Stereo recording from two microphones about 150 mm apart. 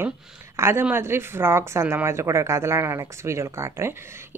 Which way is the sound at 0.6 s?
15° right (ahead or behind).